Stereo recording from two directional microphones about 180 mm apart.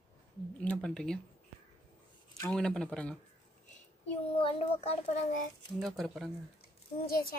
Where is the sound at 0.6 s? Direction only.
5° left (ahead or behind).